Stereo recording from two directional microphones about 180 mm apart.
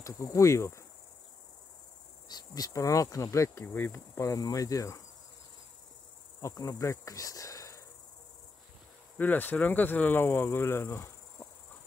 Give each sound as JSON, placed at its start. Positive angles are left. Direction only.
{"t": 0.0, "sound": "insect", "side_deg": 15}
{"t": 2.2, "sound": "insect", "side_deg": 20}
{"t": 6.4, "sound": "insect", "side_deg": 20}
{"t": 9.2, "sound": "insect", "side_deg": 10}